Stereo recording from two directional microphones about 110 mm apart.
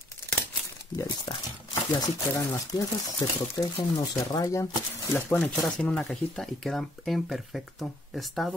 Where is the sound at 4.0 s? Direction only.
35° left (ahead or behind).